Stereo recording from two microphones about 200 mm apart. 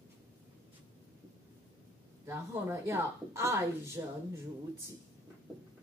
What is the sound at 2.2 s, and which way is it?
Speech, 10° right (ahead or behind).